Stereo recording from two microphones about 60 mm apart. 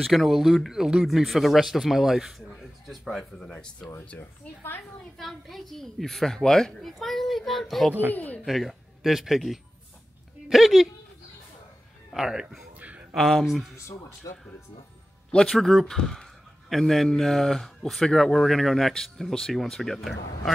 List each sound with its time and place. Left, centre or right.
0.0 s speech: centre
3.3 s a man's voice: centre
4.2 s a woman's voice: left
5.1 s speech: centre
8.1 s speech: left
8.5 s speech: centre
12.1 s speech: centre
12.7 s a sound: right
13.1 s speech: centre
13.7 s speech: left
15.3 s a man's voice: centre